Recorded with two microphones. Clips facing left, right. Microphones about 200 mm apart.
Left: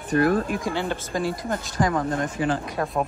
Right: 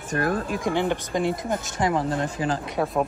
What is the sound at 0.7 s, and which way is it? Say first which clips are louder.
Speech: right 3 dB; 15° right (ahead or behind).